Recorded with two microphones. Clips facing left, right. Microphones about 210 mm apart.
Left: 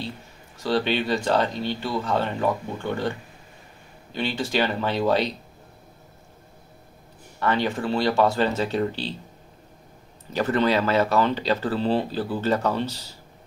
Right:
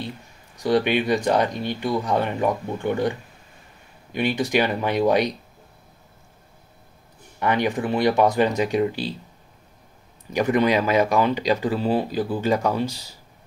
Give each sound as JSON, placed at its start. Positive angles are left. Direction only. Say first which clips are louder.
{"t": 0.6, "sound": "speech", "louder": "right 3 dB", "side_deg": -15}
{"t": 7.3, "sound": "speech", "louder": "right 2 dB", "side_deg": -15}
{"t": 10.3, "sound": "speech", "louder": "right 2 dB", "side_deg": -15}